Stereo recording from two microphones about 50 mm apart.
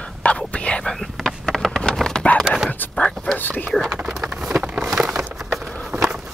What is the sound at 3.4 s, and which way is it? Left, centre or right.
Whispering, left.